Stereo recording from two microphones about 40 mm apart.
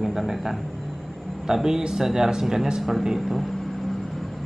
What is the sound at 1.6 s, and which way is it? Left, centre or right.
Speech, centre.